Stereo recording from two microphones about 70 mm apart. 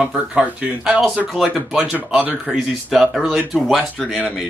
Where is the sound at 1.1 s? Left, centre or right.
Centre.